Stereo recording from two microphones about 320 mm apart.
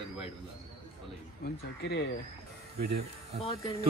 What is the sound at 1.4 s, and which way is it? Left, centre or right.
Speech, left.